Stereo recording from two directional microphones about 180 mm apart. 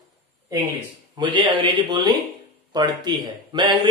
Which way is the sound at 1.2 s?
25° right (ahead or behind).